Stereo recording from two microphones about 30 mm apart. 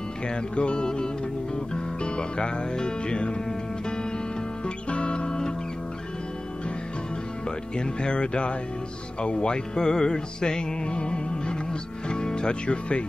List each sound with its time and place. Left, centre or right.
0.3 s speech: left
0.8 s music: left
2.0 s speech: left
3.4 s music: left
4.6 s music: left
7.4 s speech: left
9.2 s music: left
12.1 s speech: left